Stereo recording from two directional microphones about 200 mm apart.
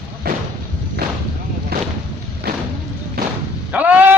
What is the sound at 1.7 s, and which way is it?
Artillery fire, 50° right (ahead or behind).